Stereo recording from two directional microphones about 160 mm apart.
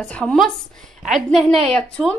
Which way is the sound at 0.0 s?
5° left (ahead or behind).